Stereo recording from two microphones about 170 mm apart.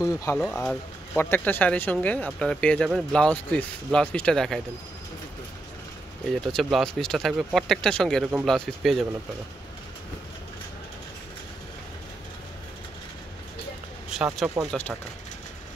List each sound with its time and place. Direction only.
0.0 s speech: 20° left (ahead or behind)
0.4 s speech: 5° left (ahead or behind)
6.4 s speech: centre (ahead or behind)
14.1 s speech: 5° right (ahead or behind)